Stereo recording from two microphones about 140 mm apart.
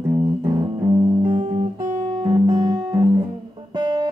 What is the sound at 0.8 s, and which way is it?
Music, 35° right (ahead or behind).